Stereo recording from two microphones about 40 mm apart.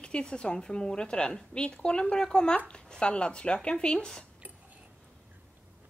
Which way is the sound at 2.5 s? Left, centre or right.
Left.